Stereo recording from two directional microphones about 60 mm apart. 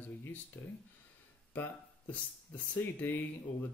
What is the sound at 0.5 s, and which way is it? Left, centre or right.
Speech, left.